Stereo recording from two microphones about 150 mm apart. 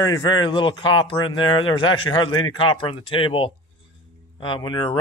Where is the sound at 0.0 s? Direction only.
30° left (ahead or behind).